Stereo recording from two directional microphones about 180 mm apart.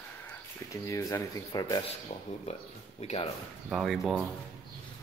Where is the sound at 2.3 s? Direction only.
40° left (ahead or behind).